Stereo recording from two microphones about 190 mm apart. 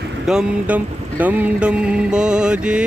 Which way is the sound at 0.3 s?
5° right (ahead or behind).